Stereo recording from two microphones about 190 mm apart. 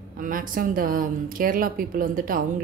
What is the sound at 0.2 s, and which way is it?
Speech, 45° right (ahead or behind).